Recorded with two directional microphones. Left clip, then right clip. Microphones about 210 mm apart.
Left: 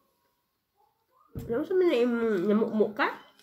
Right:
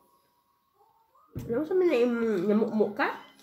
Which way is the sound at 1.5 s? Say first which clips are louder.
Even; 40° left (ahead or behind).